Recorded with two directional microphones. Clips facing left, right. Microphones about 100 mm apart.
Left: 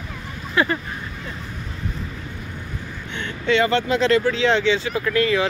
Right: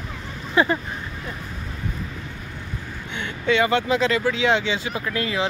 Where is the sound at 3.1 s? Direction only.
10° right (ahead or behind).